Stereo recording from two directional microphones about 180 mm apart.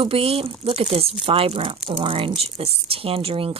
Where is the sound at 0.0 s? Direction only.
30° right (ahead or behind).